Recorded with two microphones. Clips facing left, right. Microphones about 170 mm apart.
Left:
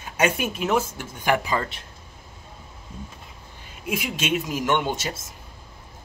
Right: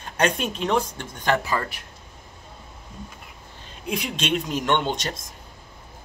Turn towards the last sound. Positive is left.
turn(degrees=5)  # may be behind; listen again after turning